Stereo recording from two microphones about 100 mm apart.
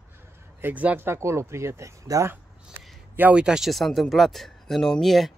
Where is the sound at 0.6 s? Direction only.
15° right (ahead or behind).